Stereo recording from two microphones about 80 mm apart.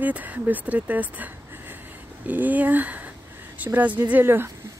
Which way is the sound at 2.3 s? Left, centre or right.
Centre.